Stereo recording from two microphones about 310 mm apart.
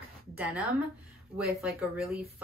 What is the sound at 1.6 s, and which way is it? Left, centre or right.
Speech, centre.